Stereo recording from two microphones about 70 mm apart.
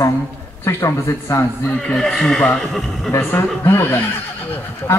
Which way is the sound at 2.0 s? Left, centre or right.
Centre.